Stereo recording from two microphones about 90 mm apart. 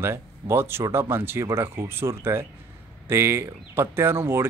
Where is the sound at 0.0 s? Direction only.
30° right (ahead or behind).